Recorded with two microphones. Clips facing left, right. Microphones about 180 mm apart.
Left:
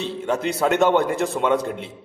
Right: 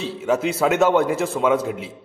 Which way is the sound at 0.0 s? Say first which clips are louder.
Right 2 dB; 5° right (ahead or behind).